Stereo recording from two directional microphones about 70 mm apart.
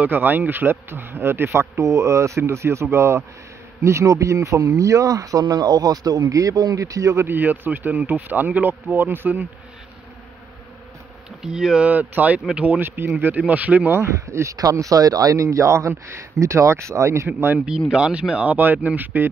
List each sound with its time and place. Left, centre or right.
0.0 s speech: right
5.4 s speech: right
7.2 s speech: right
11.4 s speech: centre
11.9 s speech: right
12.8 s speech: right
14.1 s speech: right
17.6 s speech: centre; by 19.2 s right